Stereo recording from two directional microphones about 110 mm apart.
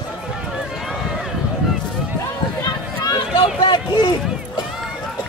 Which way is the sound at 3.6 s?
40° left (ahead or behind).